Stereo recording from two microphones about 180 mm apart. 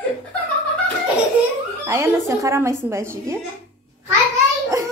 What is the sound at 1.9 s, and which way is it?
A woman's voice, 15° right (ahead or behind).